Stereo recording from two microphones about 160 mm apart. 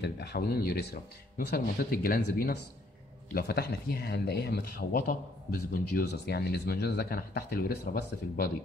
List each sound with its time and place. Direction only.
0.0 s speech: 90° left; by 2.6 s 65° left (ahead or behind)
3.3 s speech: 75° left (ahead or behind)